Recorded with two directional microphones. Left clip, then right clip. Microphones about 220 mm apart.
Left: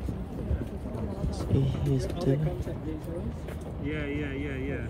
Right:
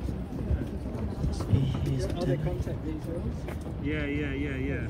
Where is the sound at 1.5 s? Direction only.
25° left (ahead or behind).